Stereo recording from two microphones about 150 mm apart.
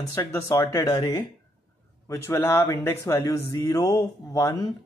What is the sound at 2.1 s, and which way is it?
Speech, 15° left (ahead or behind).